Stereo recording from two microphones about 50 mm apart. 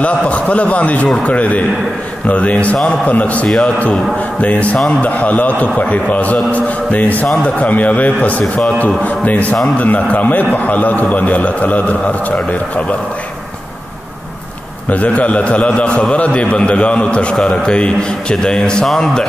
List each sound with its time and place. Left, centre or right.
0.0 s a man's voice: left
3.4 s a man's voice: centre
4.4 s a man's voice: left
14.9 s a man's voice: left; by 19.2 s centre